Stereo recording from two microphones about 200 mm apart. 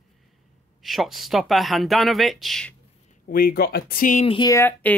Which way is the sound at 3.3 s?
45° left (ahead or behind).